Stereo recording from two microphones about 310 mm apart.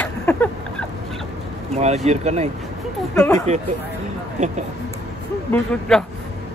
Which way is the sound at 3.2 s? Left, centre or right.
Centre.